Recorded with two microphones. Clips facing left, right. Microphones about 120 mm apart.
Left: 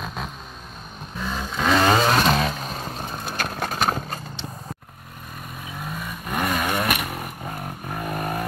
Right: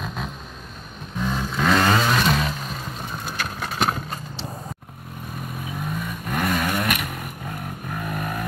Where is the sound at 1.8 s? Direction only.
25° left (ahead or behind).